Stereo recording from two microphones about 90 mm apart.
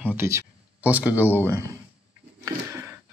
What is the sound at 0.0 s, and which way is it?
Speech, 20° right (ahead or behind).